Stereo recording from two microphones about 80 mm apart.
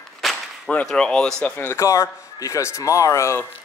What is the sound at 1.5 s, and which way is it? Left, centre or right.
Speech, left.